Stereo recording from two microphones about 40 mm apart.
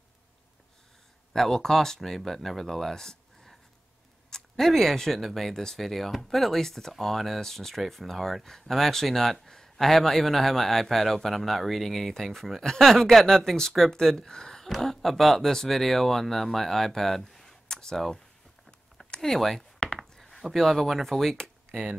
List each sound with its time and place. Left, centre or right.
1.3 s speech: centre
14.7 s speech: centre
19.0 s a sound: left
19.3 s speech: centre